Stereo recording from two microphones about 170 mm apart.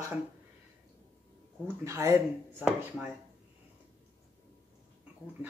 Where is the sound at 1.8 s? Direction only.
15° right (ahead or behind).